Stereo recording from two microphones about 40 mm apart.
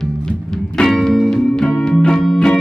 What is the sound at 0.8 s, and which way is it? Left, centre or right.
Music, centre.